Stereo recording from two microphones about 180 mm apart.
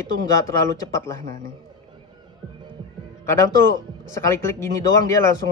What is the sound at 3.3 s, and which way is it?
Speech, 15° left (ahead or behind).